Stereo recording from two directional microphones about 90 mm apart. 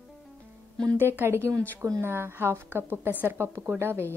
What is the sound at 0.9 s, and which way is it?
A woman's voice, 25° right (ahead or behind).